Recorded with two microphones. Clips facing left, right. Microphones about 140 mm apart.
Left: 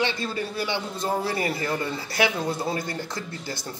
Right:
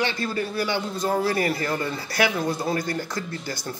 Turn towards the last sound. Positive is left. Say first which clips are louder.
# right 2 dB
turn(degrees=25)  # may be behind; listen again after turning